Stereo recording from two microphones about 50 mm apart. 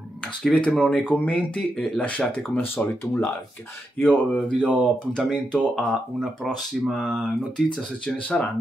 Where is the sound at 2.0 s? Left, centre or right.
Left.